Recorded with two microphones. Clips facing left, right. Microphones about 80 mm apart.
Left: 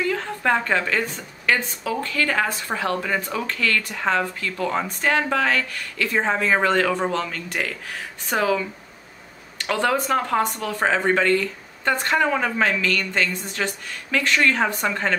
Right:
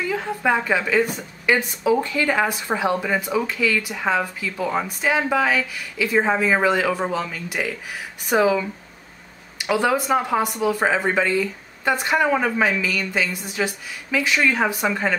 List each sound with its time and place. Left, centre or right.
0.0 s speech: centre